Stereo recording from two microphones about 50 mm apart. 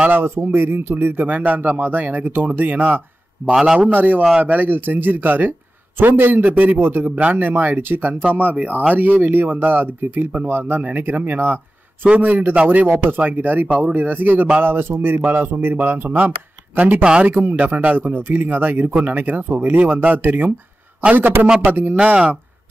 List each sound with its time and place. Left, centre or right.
0.1 s speech: right
4.6 s speech: right
6.4 s speech: right
7.1 s speech: right
12.9 s speech: right
16.1 s speech: right
17.0 s speech: centre
17.3 s speech: right
21.9 s speech: right